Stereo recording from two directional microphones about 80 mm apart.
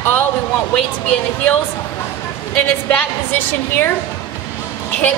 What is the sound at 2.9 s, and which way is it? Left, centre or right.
Speech, centre.